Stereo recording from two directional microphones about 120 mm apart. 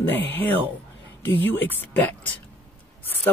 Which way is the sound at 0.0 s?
15° left (ahead or behind).